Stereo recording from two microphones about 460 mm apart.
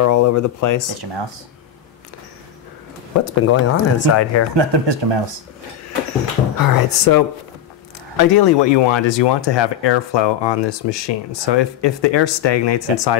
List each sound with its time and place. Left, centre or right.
0.0 s speech: left
0.9 s speech: right
3.3 s speech: left
4.6 s speech: right
6.6 s speech: left